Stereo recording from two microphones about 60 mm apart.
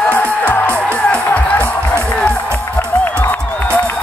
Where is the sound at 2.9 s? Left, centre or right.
Left.